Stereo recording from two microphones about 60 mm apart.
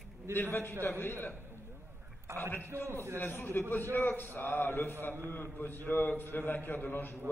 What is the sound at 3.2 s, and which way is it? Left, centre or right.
A man's voice, left.